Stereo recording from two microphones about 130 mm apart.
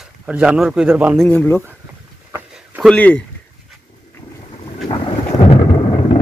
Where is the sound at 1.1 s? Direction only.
15° left (ahead or behind).